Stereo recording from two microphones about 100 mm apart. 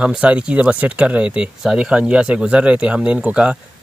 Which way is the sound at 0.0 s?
10° right (ahead or behind).